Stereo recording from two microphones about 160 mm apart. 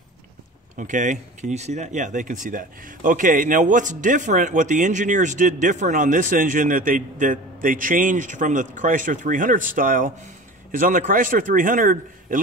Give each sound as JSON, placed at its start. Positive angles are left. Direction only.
{"t": 0.7, "sound": "a man's voice", "side_deg": -50}